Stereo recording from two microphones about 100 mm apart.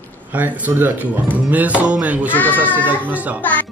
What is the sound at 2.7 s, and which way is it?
Speech, 20° right (ahead or behind).